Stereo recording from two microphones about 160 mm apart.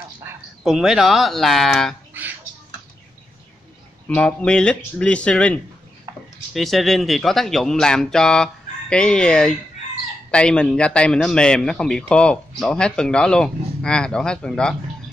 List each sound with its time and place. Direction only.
0.7 s a man's voice: 5° right (ahead or behind)
4.1 s speech: 5° left (ahead or behind)
6.1 s a sound: 25° right (ahead or behind)
6.5 s a man's voice: centre (ahead or behind)